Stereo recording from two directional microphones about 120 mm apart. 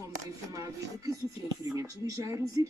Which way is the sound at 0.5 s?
30° right (ahead or behind).